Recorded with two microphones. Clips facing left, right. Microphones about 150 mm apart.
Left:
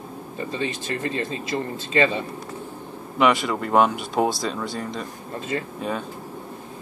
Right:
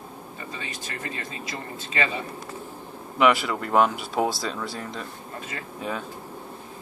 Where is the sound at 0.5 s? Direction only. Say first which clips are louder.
Left 10 dB; 30° left (ahead or behind).